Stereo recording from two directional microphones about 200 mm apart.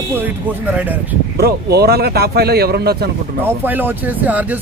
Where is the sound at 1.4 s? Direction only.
55° right (ahead or behind).